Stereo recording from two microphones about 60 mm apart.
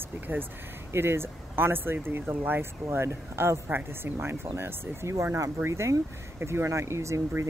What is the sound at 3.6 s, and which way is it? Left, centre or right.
Speech, right.